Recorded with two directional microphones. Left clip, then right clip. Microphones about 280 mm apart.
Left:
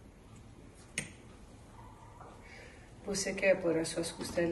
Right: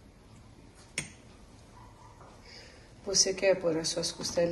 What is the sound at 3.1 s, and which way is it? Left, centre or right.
Speech, centre.